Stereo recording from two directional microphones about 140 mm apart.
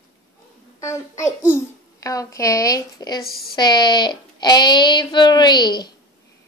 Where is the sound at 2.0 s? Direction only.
25° left (ahead or behind).